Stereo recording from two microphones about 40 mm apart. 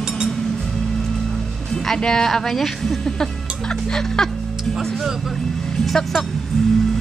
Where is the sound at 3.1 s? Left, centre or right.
Centre.